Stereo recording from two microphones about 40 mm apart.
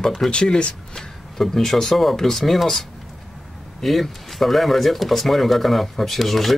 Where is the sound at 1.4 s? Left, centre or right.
Centre.